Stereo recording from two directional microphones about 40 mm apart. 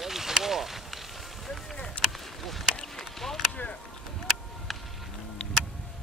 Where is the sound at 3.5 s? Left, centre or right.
Left.